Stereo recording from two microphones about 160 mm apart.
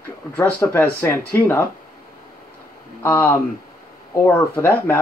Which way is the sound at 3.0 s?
10° left (ahead or behind).